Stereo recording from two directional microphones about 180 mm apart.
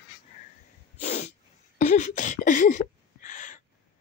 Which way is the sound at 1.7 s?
40° left (ahead or behind).